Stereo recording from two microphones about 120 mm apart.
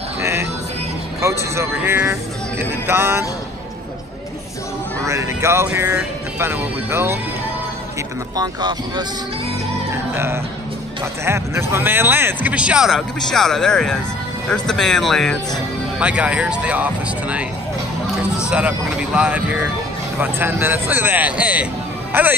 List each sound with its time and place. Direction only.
0.2 s music: 20° right (ahead or behind)
1.2 s speech: 20° right (ahead or behind)
5.0 s speech: 25° right (ahead or behind)
8.4 s speech: 35° right (ahead or behind)
10.1 s speech: 20° right (ahead or behind); by 15.3 s 5° left (ahead or behind)
16.0 s speech: 10° right (ahead or behind)